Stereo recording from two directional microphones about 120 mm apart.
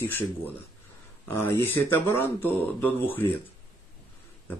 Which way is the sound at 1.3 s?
20° left (ahead or behind).